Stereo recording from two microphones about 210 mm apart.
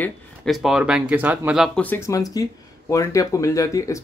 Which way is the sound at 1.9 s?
15° left (ahead or behind).